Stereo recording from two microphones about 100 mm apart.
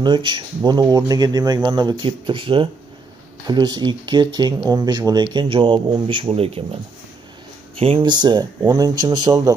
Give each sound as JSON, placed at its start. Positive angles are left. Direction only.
{"t": 0.0, "sound": "speech", "side_deg": -50}
{"t": 3.4, "sound": "speech", "side_deg": -45}
{"t": 6.3, "sound": "speech", "side_deg": -75}
{"t": 8.0, "sound": "speech", "side_deg": -45}